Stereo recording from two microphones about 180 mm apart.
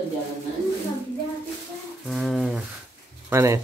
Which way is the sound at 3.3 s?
15° right (ahead or behind).